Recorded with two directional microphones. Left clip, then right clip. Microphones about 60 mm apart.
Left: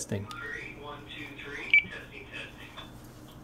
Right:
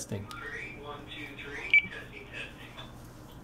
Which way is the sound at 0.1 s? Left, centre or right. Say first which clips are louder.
Left 4 dB; left.